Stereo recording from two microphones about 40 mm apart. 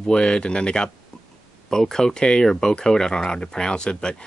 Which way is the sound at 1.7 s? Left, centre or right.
Centre.